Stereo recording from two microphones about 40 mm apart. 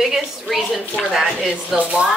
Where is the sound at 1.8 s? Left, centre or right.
Right.